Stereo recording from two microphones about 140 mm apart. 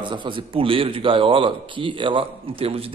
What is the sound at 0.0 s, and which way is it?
Speech, 35° right (ahead or behind).